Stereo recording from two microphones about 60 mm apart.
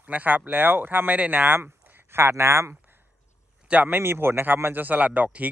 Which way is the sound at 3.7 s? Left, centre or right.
Right.